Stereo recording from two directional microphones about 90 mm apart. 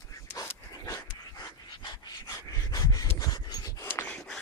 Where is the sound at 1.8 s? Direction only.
45° left (ahead or behind).